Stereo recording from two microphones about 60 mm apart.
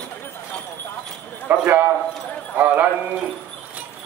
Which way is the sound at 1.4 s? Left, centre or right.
Right.